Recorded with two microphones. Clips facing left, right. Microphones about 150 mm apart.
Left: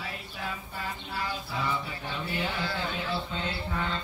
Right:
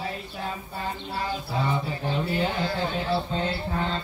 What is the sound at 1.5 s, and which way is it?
Speech, 35° right (ahead or behind).